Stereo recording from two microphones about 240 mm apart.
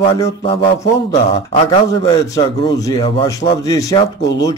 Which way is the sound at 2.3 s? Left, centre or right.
Centre.